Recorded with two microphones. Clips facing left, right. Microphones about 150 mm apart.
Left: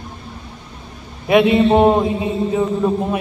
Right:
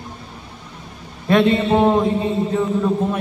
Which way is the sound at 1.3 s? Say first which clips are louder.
Left 3 dB; 10° left (ahead or behind).